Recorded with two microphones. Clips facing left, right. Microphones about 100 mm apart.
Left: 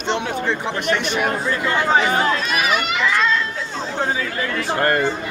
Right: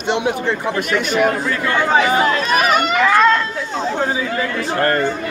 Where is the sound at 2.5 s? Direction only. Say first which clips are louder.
Right 5 dB; 45° right (ahead or behind).